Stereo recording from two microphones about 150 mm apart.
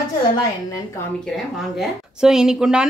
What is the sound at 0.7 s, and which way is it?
Speech, 20° left (ahead or behind).